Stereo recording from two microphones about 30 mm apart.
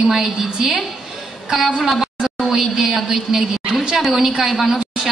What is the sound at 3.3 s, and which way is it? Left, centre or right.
Speech, centre.